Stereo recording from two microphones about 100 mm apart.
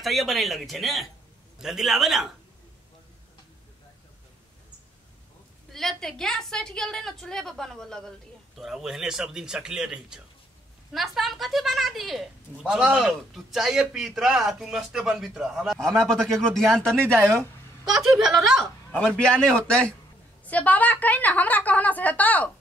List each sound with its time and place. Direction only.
0.0 s speech: centre (ahead or behind)
5.7 s speech: 5° left (ahead or behind)
17.2 s speech: 25° right (ahead or behind)
17.9 s a woman's voice: centre (ahead or behind); by 22.5 s 15° left (ahead or behind)